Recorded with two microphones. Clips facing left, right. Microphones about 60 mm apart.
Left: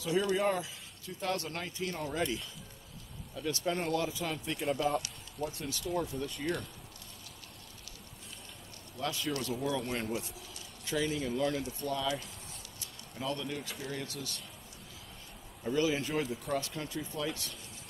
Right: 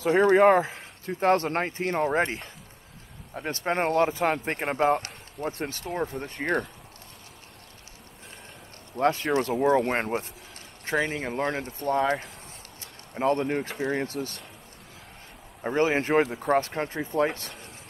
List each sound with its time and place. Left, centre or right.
0.0 s speech: right
8.9 s speech: right
15.6 s speech: right